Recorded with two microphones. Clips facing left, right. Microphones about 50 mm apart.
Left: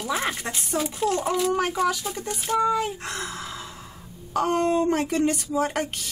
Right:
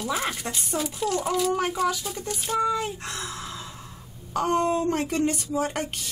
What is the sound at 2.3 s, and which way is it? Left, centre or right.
Speech, left.